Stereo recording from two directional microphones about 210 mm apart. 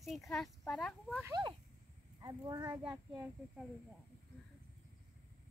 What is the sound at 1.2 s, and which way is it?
Speech, 20° right (ahead or behind).